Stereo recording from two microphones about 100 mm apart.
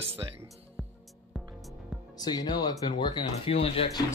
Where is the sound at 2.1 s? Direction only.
40° left (ahead or behind).